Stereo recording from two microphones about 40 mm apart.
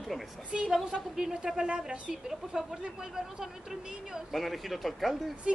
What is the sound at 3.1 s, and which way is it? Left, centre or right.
A woman's voice, centre.